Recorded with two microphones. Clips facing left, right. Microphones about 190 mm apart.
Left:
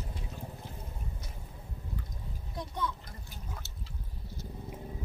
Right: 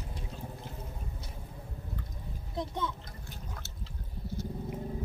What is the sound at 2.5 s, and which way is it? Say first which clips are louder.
Speech: right 2 dB; 25° right (ahead or behind).